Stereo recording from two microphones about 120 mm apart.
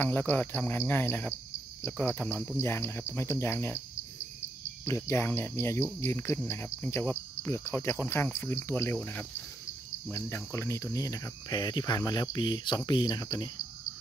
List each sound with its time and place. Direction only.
0.0 s speech: 15° left (ahead or behind)
1.8 s cricket: 20° left (ahead or behind)
4.8 s cricket: 20° left (ahead or behind)
10.1 s cricket: 20° left (ahead or behind)